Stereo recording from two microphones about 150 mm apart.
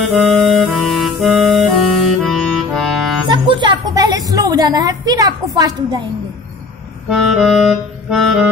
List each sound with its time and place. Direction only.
0.0 s clarinet: centre (ahead or behind)
2.7 s music: centre (ahead or behind)
3.3 s speech: 30° right (ahead or behind)
7.1 s music: centre (ahead or behind)